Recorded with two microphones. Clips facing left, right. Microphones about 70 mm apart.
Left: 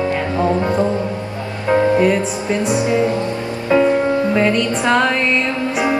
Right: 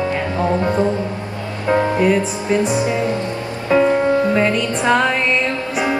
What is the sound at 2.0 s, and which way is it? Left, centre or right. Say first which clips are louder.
Music: even; centre.